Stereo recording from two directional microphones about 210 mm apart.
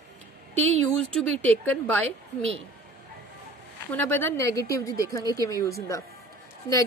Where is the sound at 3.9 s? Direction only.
10° left (ahead or behind).